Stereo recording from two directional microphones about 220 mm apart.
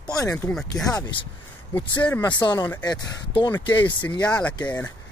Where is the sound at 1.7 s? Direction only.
10° left (ahead or behind).